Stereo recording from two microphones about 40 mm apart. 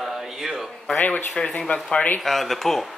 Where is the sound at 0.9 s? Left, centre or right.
Left.